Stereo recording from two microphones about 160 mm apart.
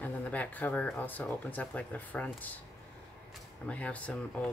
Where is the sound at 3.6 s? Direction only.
10° left (ahead or behind).